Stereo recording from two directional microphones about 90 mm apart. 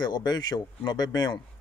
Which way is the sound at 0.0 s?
55° left (ahead or behind).